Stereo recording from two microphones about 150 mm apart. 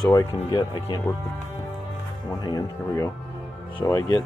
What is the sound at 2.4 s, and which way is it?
Speech, 25° left (ahead or behind).